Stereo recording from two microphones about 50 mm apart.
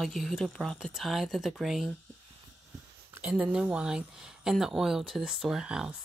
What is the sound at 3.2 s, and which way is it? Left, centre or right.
Speech, right.